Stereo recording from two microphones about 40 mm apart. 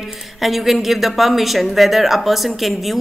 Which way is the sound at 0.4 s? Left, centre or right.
Centre.